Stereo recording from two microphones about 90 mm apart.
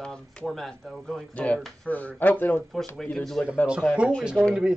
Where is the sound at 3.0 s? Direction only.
5° left (ahead or behind).